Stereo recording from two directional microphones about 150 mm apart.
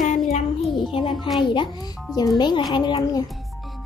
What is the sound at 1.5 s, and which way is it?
A woman's voice, 35° left (ahead or behind).